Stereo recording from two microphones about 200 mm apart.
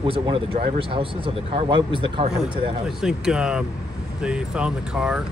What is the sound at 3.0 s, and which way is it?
Speech, 5° right (ahead or behind).